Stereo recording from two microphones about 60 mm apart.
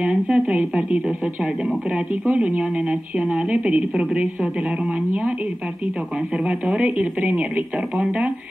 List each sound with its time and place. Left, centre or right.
0.0 s speech: centre
6.3 s speech: centre